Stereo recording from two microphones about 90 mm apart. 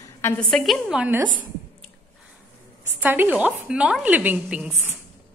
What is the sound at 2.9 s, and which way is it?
A woman's voice, 20° right (ahead or behind).